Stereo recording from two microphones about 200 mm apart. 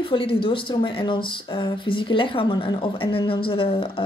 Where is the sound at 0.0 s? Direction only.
25° left (ahead or behind).